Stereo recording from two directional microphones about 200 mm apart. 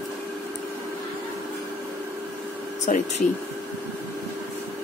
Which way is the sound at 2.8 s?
35° left (ahead or behind).